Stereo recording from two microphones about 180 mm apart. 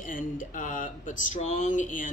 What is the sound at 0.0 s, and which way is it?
Speech, 50° left (ahead or behind).